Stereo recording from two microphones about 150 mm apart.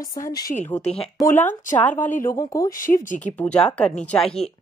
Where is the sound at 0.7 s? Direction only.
45° left (ahead or behind).